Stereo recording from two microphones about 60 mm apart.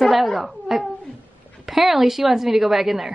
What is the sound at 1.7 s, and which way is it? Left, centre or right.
A woman's voice, centre.